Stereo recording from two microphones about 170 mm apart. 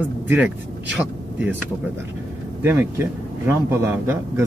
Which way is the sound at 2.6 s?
15° right (ahead or behind).